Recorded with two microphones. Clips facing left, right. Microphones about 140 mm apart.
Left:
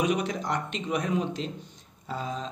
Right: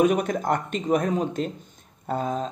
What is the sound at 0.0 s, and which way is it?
Speech, 45° right (ahead or behind).